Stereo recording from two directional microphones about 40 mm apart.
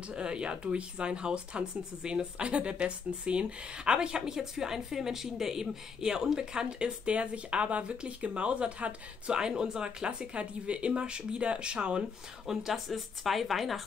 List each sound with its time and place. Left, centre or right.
0.1 s speech: right
7.1 s speech: right
9.4 s speech: centre
12.4 s speech: centre